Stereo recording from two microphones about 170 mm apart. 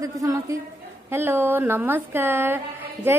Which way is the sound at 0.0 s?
20° right (ahead or behind).